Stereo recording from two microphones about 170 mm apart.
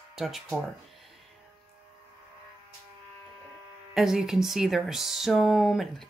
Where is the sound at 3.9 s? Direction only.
5° right (ahead or behind).